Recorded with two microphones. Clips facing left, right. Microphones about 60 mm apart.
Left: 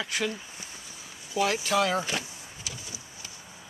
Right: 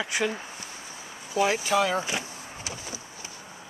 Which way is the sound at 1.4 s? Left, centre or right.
Centre.